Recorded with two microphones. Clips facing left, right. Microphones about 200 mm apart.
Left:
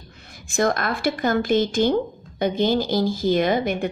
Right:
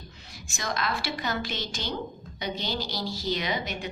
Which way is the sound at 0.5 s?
55° left (ahead or behind).